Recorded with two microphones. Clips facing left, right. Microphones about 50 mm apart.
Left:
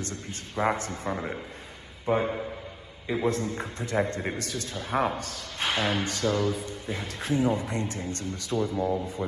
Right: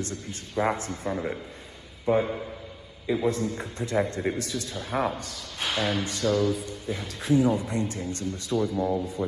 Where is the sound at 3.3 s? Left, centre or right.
Left.